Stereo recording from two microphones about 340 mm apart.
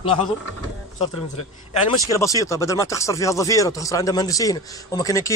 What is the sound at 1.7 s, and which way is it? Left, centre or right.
Speech, centre.